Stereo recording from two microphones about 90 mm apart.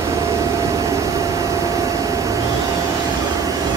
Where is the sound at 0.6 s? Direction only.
35° right (ahead or behind).